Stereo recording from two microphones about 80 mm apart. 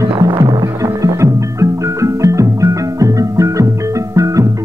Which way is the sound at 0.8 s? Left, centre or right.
Right.